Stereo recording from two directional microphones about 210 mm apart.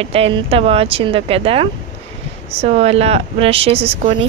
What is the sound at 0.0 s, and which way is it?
Speech, 25° right (ahead or behind).